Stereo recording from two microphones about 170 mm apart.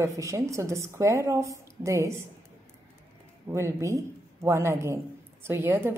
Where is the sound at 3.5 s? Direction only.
15° right (ahead or behind).